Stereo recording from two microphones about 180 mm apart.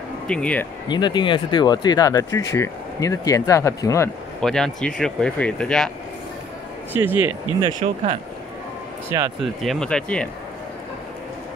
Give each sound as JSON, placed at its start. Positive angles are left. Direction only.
{"t": 0.3, "sound": "speech", "side_deg": 5}
{"t": 0.8, "sound": "speech", "side_deg": 25}
{"t": 4.4, "sound": "speech", "side_deg": 5}
{"t": 6.9, "sound": "speech", "side_deg": -10}
{"t": 7.8, "sound": "speech", "side_deg": -40}
{"t": 9.4, "sound": "speech", "side_deg": 0}